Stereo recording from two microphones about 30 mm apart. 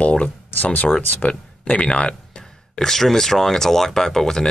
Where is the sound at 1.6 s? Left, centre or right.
Left.